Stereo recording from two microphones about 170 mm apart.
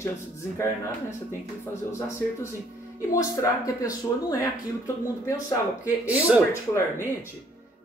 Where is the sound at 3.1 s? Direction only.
20° left (ahead or behind).